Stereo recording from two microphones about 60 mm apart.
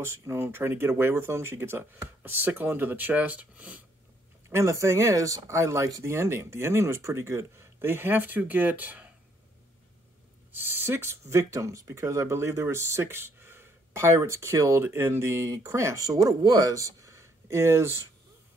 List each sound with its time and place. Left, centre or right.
0.0 s speech: right
4.5 s speech: right
10.5 s speech: right
12.0 s speech: right
14.8 s speech: right
16.1 s speech: right